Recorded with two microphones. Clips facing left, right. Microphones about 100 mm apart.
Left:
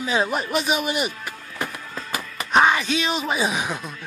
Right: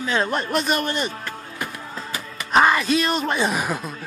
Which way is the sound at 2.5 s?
Centre (ahead or behind).